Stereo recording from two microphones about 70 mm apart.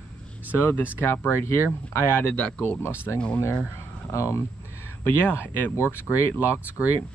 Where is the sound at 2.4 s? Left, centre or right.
Left.